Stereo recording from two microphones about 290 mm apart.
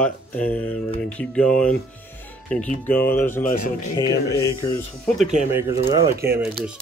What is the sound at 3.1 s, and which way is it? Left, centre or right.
Speech, centre.